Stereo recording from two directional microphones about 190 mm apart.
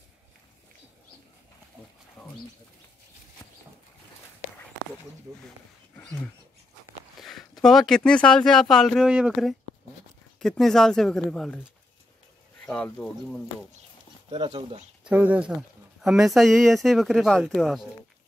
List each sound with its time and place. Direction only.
3.4 s a sound: 15° left (ahead or behind)
7.2 s speech: centre (ahead or behind)
12.6 s speech: 5° left (ahead or behind)
14.3 s speech: 30° right (ahead or behind)
15.0 s speech: 5° right (ahead or behind)